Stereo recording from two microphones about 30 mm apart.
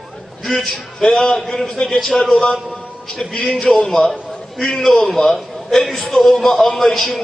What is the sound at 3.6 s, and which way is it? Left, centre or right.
A man's voice, centre.